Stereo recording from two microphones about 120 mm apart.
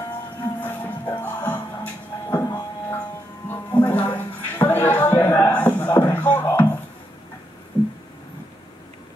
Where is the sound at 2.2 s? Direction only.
30° left (ahead or behind).